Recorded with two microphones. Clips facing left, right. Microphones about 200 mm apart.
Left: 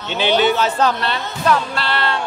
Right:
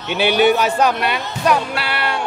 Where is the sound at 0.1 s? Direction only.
10° right (ahead or behind).